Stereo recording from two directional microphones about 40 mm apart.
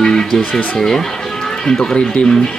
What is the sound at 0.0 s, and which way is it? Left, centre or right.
Guitar, centre.